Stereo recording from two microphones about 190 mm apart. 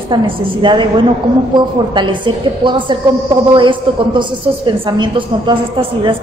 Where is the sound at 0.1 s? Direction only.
25° right (ahead or behind).